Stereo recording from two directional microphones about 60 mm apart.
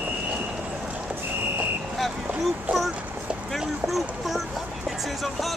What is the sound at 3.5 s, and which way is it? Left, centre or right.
Speech, centre.